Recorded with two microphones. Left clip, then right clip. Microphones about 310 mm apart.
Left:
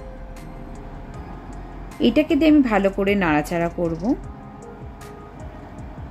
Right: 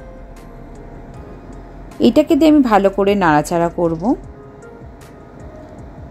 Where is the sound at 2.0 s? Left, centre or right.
Centre.